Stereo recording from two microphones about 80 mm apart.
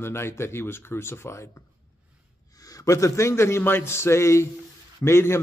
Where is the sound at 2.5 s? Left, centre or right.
Left.